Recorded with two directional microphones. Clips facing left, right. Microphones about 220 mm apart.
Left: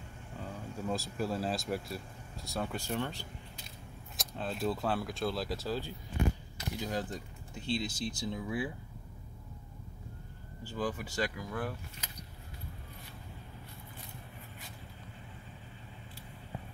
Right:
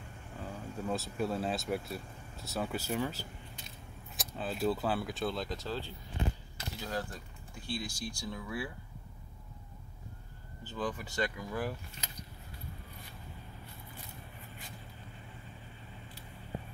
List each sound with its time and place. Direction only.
0.4 s speech: centre (ahead or behind); by 8.7 s 20° left (ahead or behind)
10.6 s speech: 10° left (ahead or behind)